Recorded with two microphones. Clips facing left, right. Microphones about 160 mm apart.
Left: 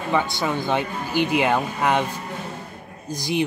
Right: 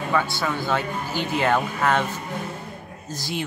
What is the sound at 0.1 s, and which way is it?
Speech, 20° left (ahead or behind).